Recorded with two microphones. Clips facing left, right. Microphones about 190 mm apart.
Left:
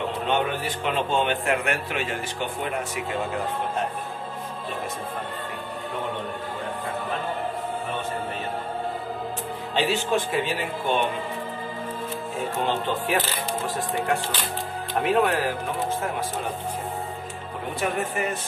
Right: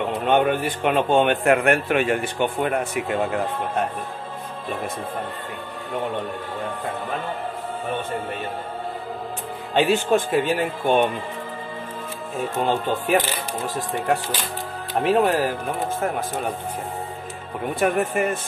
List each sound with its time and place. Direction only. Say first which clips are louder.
0.3 s a man's voice: right 7 dB; 55° right (ahead or behind)
9.8 s speech: right 5 dB; 50° right (ahead or behind)
15.0 s speech: right 3 dB; 35° right (ahead or behind)
17.7 s speech: right 6 dB; 60° right (ahead or behind)